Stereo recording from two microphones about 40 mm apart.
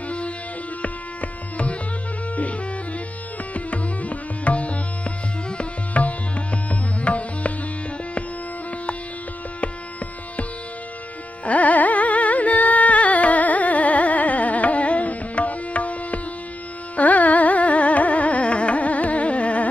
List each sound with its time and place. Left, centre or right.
3.5 s music: left
5.6 s tabla: left
11.4 s carnatic music: left